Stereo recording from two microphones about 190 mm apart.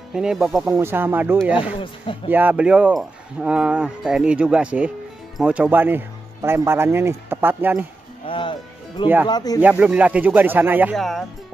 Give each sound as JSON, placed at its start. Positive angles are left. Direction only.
{"t": 0.1, "sound": "speech", "side_deg": -5}
{"t": 8.3, "sound": "music", "side_deg": 25}
{"t": 9.3, "sound": "speech", "side_deg": 20}
{"t": 9.6, "sound": "speech", "side_deg": -10}
{"t": 11.0, "sound": "speech", "side_deg": 0}